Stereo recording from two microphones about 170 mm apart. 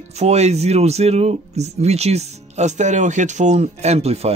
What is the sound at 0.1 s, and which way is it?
Speech, 40° right (ahead or behind).